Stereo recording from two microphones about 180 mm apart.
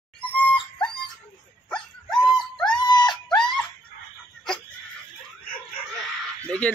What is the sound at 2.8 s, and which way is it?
Dog, 25° left (ahead or behind).